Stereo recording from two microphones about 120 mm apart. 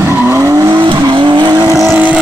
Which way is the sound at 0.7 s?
40° right (ahead or behind).